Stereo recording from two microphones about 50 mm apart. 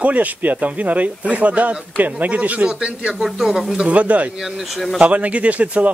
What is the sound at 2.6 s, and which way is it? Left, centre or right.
Speech, centre.